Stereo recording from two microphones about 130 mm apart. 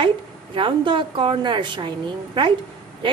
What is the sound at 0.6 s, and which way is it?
A woman's voice, 40° right (ahead or behind).